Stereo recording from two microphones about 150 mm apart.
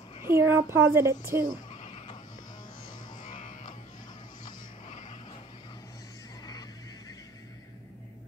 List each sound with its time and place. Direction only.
0.3 s speech: 15° right (ahead or behind)
1.8 s sheep: 45° left (ahead or behind)
3.2 s music: 60° left (ahead or behind)
4.8 s vehicle: 55° left (ahead or behind)